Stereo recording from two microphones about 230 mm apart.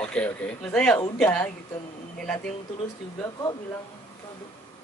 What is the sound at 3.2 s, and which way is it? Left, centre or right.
Speech, centre.